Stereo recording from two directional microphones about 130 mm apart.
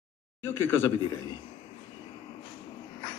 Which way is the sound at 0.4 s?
15° left (ahead or behind).